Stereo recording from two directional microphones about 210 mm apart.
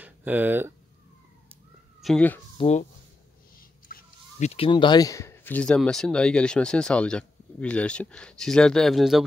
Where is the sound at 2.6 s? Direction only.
35° left (ahead or behind).